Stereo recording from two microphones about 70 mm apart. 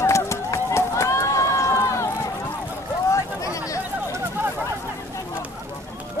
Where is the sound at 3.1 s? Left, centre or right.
Left.